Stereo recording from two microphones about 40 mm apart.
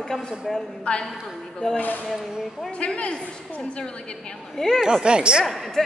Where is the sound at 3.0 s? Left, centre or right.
Left.